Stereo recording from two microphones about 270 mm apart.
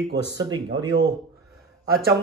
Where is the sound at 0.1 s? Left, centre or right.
Centre.